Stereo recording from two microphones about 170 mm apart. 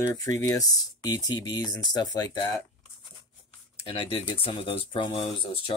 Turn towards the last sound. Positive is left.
turn(degrees=35)  # may be behind; listen again after turning